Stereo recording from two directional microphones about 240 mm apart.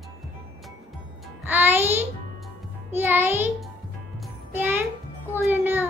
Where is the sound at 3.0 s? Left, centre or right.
Centre.